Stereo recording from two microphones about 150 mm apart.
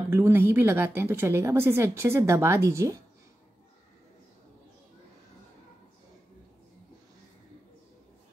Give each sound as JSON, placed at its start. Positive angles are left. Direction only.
{"t": 0.1, "sound": "a woman's voice", "side_deg": -15}